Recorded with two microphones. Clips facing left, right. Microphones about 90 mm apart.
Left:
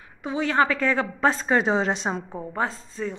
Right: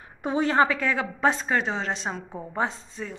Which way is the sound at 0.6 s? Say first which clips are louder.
Left 4 dB; 10° right (ahead or behind).